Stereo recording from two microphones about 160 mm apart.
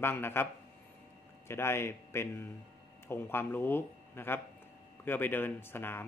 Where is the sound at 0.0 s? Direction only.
15° left (ahead or behind).